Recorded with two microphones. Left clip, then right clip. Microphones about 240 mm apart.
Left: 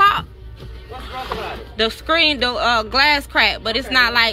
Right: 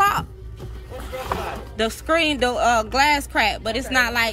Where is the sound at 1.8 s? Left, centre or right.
Centre.